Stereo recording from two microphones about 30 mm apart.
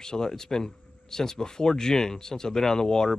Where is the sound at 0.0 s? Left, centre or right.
Left.